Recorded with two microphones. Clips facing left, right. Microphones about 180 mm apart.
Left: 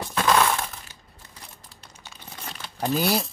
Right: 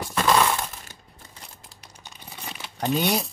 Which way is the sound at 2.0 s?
10° right (ahead or behind).